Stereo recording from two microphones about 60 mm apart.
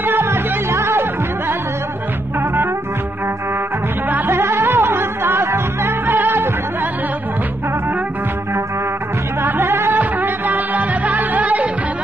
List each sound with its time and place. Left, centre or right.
0.0 s music: right
4.1 s music: right
6.0 s music: right
9.4 s music: right
9.9 s music: right